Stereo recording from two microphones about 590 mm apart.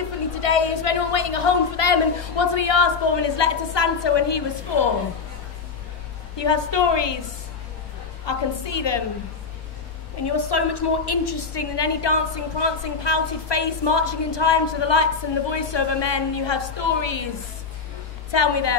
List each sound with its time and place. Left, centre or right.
0.4 s a woman's voice: left
6.3 s a woman's voice: left
8.3 s a woman's voice: left
10.2 s a woman's voice: left
18.3 s a woman's voice: left